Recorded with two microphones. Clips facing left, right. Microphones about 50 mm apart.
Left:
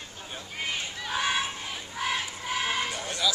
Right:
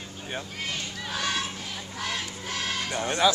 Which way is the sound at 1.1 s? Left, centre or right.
Centre.